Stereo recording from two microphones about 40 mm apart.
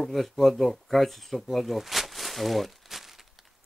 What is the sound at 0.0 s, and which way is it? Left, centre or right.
Speech, centre.